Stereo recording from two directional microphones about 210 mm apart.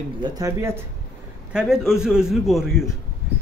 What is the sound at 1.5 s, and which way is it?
A man's voice, 5° right (ahead or behind).